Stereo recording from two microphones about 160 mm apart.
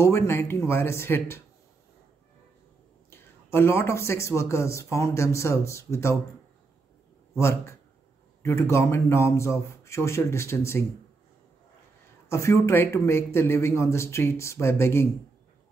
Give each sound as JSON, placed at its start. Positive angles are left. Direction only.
{"t": 0.0, "sound": "a man's voice", "side_deg": 15}
{"t": 3.1, "sound": "a man's voice", "side_deg": 15}
{"t": 7.3, "sound": "a man's voice", "side_deg": 15}
{"t": 12.3, "sound": "a man's voice", "side_deg": 15}